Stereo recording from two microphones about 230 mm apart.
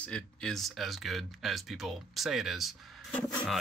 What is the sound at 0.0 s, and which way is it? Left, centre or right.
Speech, centre.